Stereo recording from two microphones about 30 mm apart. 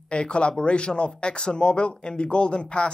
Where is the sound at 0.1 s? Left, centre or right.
Left.